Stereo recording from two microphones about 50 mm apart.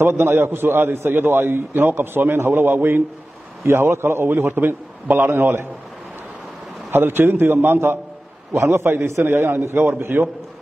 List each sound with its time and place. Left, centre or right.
0.0 s a man's voice: right
4.5 s a man's voice: right
6.9 s a man's voice: right
8.5 s a man's voice: right